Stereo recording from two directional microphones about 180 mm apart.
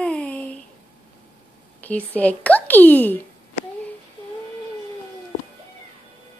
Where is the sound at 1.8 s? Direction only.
10° left (ahead or behind).